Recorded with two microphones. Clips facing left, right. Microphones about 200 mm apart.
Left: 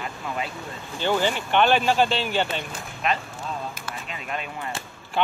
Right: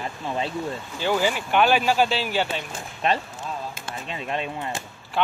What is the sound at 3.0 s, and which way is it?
Speech, 30° right (ahead or behind).